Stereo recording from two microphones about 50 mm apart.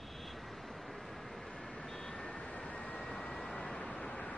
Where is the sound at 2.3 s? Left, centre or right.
Left.